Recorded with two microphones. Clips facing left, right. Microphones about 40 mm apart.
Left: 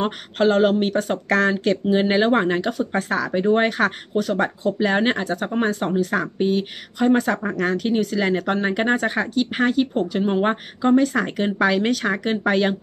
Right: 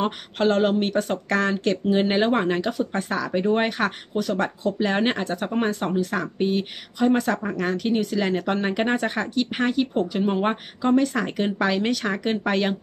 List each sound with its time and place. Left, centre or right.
0.4 s a woman's voice: centre
0.9 s speech: centre
1.9 s a woman's voice: centre